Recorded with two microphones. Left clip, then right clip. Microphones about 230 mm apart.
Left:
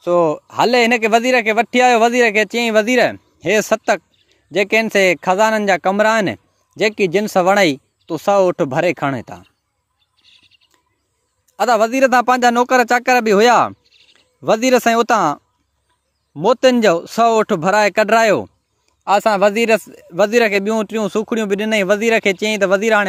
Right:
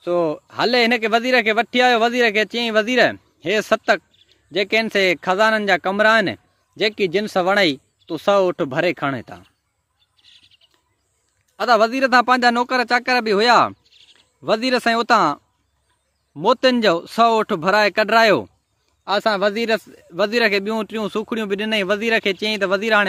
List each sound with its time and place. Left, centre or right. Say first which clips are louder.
0.0 s a man's voice: left 5 dB; left
10.1 s bird: even; centre
11.5 s a man's voice: left 2 dB; left
13.8 s a sound: right 1 dB; right
14.1 s a man's voice: left 4 dB; left